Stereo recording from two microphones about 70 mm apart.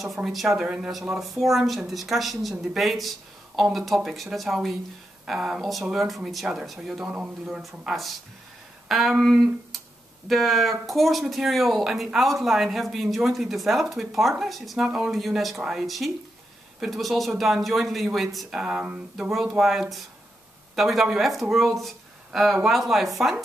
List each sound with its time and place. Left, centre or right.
0.0 s speech: centre
0.7 s speech: centre
18.6 s speech: centre
19.6 s speech: centre